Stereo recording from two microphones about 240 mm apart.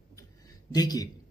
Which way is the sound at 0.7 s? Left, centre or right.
Centre.